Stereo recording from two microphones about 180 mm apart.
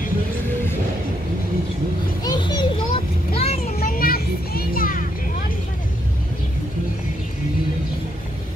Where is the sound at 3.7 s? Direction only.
55° left (ahead or behind).